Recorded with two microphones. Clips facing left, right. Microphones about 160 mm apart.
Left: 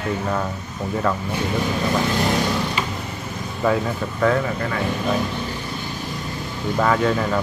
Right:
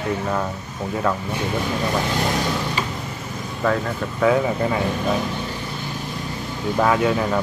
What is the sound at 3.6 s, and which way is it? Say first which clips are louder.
Speech: left 1 dB; 10° left (ahead or behind).